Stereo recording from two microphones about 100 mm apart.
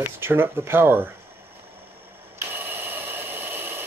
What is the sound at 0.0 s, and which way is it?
Speech, 20° right (ahead or behind).